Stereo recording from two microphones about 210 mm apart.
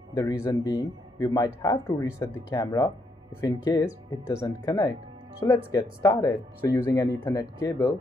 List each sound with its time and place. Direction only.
0.1 s speech: 15° left (ahead or behind)